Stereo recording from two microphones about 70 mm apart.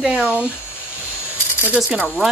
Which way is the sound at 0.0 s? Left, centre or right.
Centre.